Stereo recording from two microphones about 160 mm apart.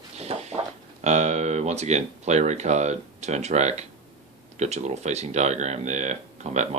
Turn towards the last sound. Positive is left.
turn(degrees=-45)  # may be behind; listen again after turning